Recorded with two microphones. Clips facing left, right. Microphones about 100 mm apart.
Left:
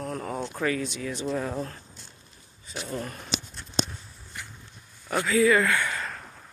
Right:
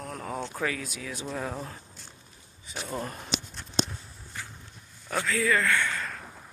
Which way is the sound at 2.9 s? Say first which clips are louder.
Even; 25° right (ahead or behind).